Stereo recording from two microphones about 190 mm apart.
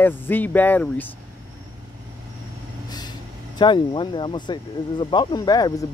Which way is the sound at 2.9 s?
20° left (ahead or behind).